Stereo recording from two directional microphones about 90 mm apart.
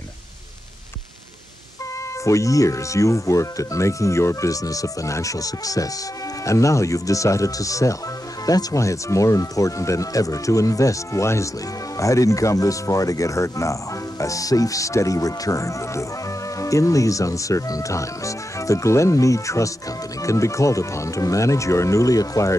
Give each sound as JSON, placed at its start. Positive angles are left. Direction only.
{"t": 2.2, "sound": "speech", "side_deg": 35}